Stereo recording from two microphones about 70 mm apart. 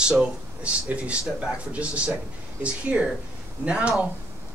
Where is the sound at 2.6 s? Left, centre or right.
Centre.